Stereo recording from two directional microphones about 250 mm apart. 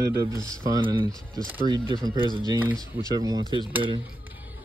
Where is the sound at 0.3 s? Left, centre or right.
Centre.